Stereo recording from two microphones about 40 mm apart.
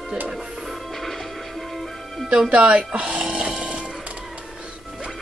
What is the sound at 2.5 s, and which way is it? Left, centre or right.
Speech, right.